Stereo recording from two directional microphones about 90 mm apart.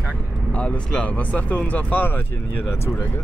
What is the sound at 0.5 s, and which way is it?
Speech, 15° left (ahead or behind).